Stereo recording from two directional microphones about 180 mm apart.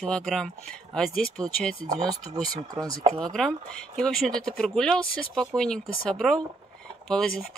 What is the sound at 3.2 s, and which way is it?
Speech, 5° left (ahead or behind).